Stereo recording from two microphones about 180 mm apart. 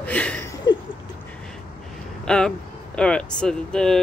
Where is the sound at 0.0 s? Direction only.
5° left (ahead or behind).